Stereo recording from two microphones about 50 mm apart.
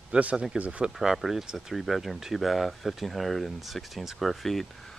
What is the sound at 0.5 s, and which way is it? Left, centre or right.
Speech, right.